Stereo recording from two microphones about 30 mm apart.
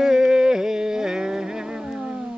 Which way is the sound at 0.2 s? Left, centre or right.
Right.